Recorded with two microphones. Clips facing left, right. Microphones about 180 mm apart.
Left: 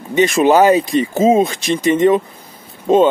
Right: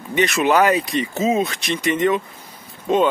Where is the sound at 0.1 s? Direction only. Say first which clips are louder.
Left 6 dB; 30° left (ahead or behind).